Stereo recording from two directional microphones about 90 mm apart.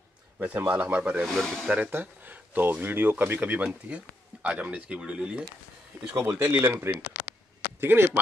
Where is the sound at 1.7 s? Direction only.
20° right (ahead or behind).